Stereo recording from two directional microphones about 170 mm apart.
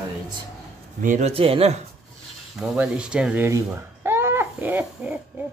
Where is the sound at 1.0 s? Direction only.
50° right (ahead or behind).